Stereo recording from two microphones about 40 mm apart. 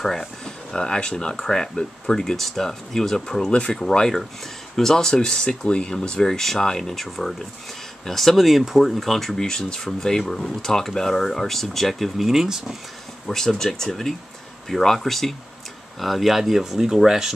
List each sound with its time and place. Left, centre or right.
0.7 s speech: left
2.3 s speech: centre
12.3 s speech: centre
13.3 s speech: centre